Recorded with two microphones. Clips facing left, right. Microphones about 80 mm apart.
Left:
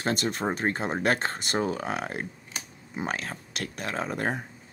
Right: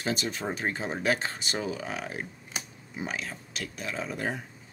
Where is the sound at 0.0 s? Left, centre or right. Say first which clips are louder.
Left 3 dB; left.